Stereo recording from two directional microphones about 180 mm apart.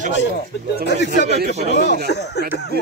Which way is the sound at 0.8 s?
70° left (ahead or behind).